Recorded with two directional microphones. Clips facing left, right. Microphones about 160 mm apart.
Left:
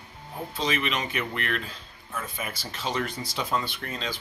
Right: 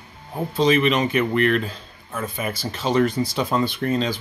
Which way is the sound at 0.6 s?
35° right (ahead or behind).